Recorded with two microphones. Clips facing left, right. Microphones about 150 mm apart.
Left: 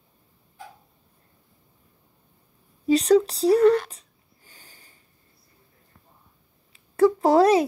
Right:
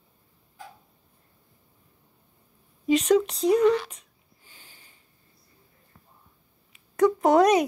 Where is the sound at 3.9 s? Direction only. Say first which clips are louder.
Left 1 dB; 35° left (ahead or behind).